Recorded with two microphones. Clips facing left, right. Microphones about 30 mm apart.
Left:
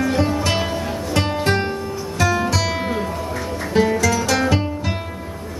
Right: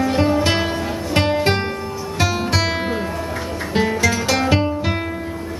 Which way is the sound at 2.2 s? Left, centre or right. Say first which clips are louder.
Left 1 dB; right.